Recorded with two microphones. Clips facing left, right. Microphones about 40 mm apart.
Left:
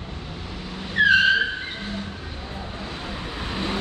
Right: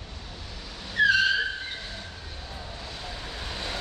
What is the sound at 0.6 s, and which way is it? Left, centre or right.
Vehicle, left.